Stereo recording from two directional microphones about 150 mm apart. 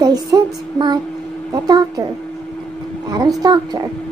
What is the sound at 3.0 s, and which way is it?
Speech, 25° right (ahead or behind).